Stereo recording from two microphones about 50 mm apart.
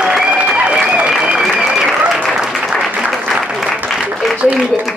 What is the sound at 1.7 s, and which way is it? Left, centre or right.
Applause, centre.